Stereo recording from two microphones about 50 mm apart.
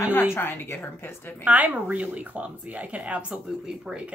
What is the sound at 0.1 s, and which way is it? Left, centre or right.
A woman's voice, left.